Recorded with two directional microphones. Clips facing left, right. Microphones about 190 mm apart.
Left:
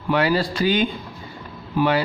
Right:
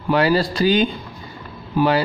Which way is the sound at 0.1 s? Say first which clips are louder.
Right 3 dB; 35° right (ahead or behind).